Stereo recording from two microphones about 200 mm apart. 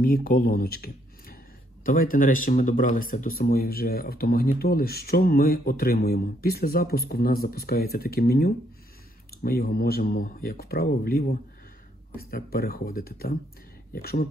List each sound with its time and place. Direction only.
0.0 s speech: 45° left (ahead or behind)